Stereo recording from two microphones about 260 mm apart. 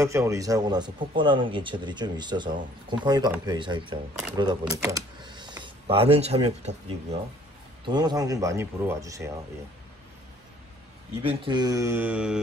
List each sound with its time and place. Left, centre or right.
0.0 s a man's voice: centre
11.2 s a man's voice: centre